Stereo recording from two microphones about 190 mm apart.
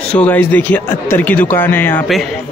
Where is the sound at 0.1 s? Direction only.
10° left (ahead or behind).